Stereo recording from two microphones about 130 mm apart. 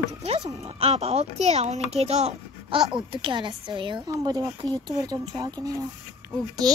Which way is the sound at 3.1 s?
40° right (ahead or behind).